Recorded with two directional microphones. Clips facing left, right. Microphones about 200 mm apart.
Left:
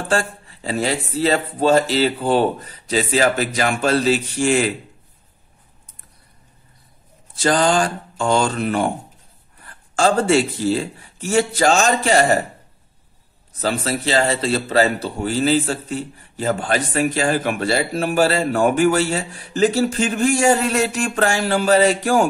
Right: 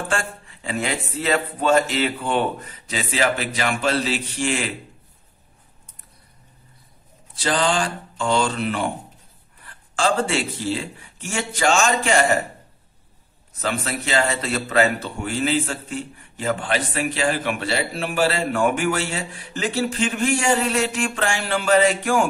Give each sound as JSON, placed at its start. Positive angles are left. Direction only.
{"t": 0.1, "sound": "a man's voice", "side_deg": 35}
{"t": 7.3, "sound": "a man's voice", "side_deg": 45}
{"t": 13.6, "sound": "a man's voice", "side_deg": 35}